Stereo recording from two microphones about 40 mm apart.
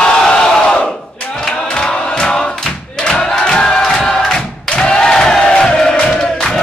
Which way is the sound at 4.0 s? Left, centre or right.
Centre.